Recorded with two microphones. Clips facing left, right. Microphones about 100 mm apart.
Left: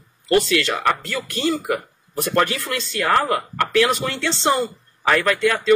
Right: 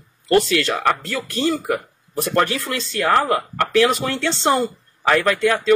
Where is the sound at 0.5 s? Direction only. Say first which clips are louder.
Right 1 dB; 35° right (ahead or behind).